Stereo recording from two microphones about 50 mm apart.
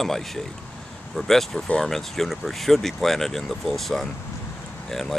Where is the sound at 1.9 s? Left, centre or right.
Centre.